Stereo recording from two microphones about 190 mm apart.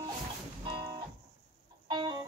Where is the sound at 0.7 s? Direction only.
25° right (ahead or behind).